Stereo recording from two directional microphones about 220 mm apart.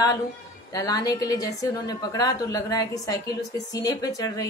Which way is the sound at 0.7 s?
15° left (ahead or behind).